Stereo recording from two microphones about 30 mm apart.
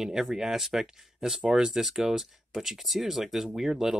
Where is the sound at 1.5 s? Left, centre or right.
Right.